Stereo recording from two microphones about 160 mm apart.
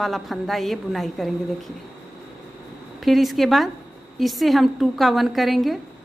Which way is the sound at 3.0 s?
Centre (ahead or behind).